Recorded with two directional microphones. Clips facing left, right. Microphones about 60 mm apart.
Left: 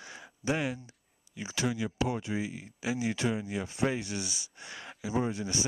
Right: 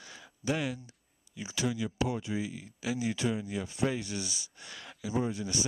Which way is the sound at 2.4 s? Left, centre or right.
Left.